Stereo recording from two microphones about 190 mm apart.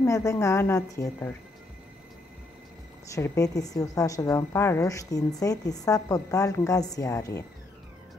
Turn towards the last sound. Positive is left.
turn(degrees=15)  # may be behind; listen again after turning